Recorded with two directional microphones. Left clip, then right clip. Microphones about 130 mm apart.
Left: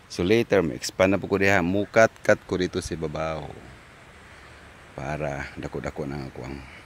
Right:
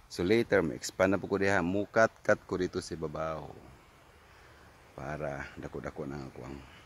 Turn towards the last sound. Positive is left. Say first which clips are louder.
# left 8 dB
turn(degrees=0)  # may be behind; listen again after turning